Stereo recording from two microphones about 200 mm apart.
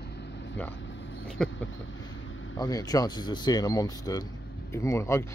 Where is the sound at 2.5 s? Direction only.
20° left (ahead or behind).